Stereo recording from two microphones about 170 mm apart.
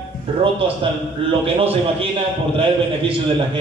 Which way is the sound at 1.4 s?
35° right (ahead or behind).